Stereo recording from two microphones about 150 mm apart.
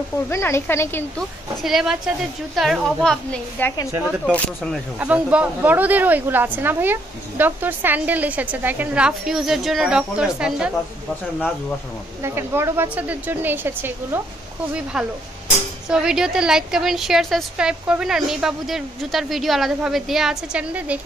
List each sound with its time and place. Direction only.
0.3 s speech: 15° left (ahead or behind)
1.6 s a woman's voice: 5° right (ahead or behind)
4.9 s speech: 10° right (ahead or behind)
12.2 s a woman's voice: 20° right (ahead or behind)